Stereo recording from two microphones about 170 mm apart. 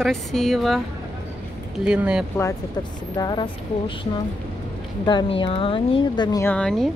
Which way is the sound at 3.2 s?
25° left (ahead or behind).